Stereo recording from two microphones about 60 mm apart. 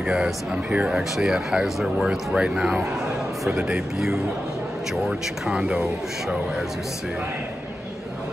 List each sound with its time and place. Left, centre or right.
0.0 s speech: centre
0.7 s speech: right
0.9 s speech: centre